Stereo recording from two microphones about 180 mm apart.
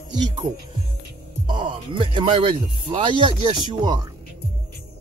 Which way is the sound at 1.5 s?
25° right (ahead or behind).